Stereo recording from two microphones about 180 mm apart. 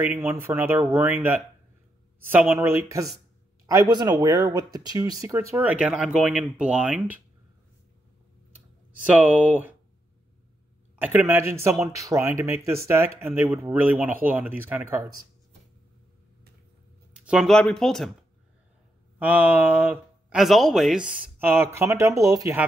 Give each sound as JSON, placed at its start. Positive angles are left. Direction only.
{"t": 0.0, "sound": "a man's voice", "side_deg": -10}
{"t": 9.0, "sound": "speech", "side_deg": -10}
{"t": 11.0, "sound": "speech", "side_deg": -10}
{"t": 17.1, "sound": "speech", "side_deg": -5}
{"t": 19.1, "sound": "speech", "side_deg": -10}